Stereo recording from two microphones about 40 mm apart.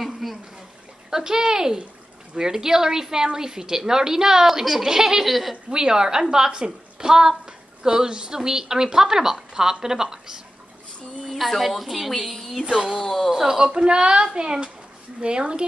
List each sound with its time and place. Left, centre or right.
0.0 s a sound: centre
1.1 s a woman's voice: centre
5.7 s a woman's voice: centre
11.3 s a woman's voice: centre
12.6 s a woman's voice: centre
13.0 s speech: centre
13.3 s a woman's voice: centre